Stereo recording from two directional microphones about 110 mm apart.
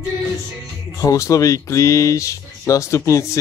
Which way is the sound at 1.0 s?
30° left (ahead or behind).